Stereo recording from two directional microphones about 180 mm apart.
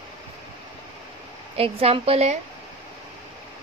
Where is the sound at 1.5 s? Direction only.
30° right (ahead or behind).